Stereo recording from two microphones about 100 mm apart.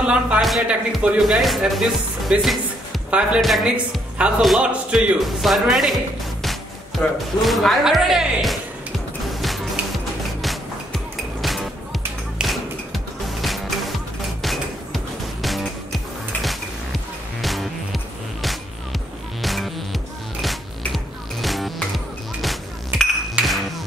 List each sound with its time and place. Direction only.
0.0 s music: 10° right (ahead or behind)
0.4 s speech: centre (ahead or behind)
2.4 s music: centre (ahead or behind)
3.1 s speech: 10° right (ahead or behind)
3.3 s speech: centre (ahead or behind)
4.2 s music: 10° right (ahead or behind)
5.2 s speech: centre (ahead or behind)
7.0 s speech: 15° left (ahead or behind)
7.4 s speech: centre (ahead or behind)
9.3 s music: centre (ahead or behind)
23.4 s a sound: 10° right (ahead or behind)